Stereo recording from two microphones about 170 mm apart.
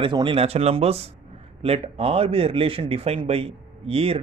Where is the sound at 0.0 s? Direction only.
30° right (ahead or behind).